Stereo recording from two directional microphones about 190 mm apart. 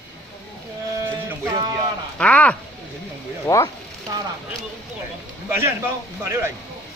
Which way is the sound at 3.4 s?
15° left (ahead or behind).